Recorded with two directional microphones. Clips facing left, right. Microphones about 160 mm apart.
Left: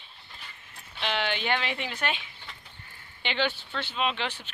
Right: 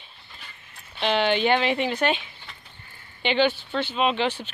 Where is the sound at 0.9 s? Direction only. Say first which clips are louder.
Right 8 dB; 25° right (ahead or behind).